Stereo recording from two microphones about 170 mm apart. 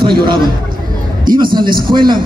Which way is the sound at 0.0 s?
25° right (ahead or behind).